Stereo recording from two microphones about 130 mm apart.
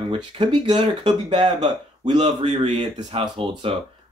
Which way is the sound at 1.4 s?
60° right (ahead or behind).